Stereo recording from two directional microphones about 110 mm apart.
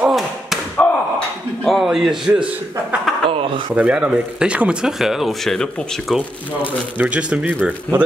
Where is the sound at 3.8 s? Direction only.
10° right (ahead or behind).